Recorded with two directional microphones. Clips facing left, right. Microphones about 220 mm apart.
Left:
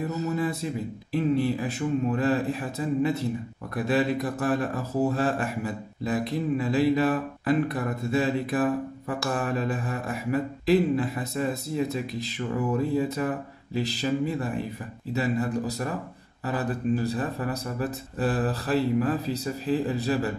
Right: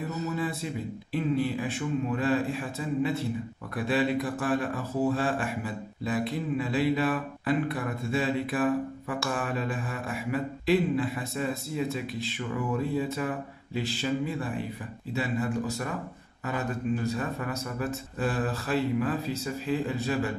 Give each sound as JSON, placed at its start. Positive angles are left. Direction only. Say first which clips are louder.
{"t": 1.1, "sound": "speech", "louder": "left 3 dB", "side_deg": 40}